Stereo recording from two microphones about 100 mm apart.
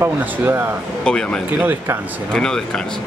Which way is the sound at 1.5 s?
25° right (ahead or behind).